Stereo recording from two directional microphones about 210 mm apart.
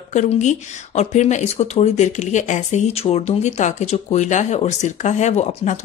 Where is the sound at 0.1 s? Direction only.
35° left (ahead or behind).